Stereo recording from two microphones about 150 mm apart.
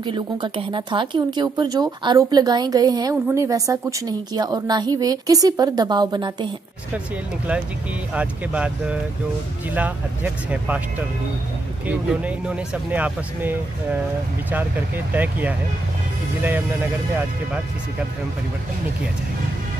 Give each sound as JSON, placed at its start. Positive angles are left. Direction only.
{"t": 0.0, "sound": "speech", "side_deg": -35}
{"t": 8.1, "sound": "speech", "side_deg": -10}